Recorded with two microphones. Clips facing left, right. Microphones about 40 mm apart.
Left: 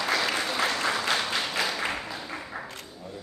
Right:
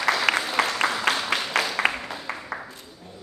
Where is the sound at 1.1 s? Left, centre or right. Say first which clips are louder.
Right 3 dB; right.